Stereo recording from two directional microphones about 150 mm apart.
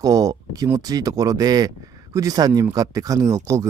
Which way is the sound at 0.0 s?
25° right (ahead or behind).